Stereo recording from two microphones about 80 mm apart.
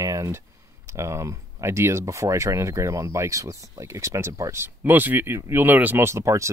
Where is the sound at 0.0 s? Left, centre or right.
Right.